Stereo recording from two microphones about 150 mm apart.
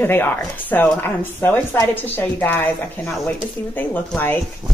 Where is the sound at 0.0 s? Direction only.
15° left (ahead or behind).